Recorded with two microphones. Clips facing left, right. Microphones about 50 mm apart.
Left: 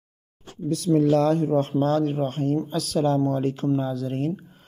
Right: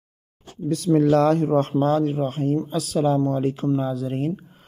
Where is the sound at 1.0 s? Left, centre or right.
Right.